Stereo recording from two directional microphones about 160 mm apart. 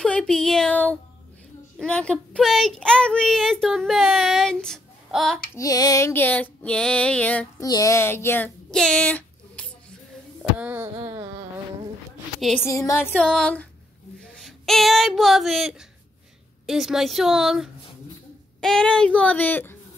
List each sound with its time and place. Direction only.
0.0 s speech: 5° left (ahead or behind)
5.6 s music: 25° left (ahead or behind)
7.6 s music: 20° left (ahead or behind)
8.6 s a sound: 5° left (ahead or behind)
10.6 s a sound: 10° right (ahead or behind)
12.4 s a woman's voice: centre (ahead or behind)
12.6 s a sound: 20° left (ahead or behind)
13.0 s music: 5° left (ahead or behind)
14.3 s child singing: centre (ahead or behind)
16.6 s speech: centre (ahead or behind)
18.6 s music: 5° left (ahead or behind)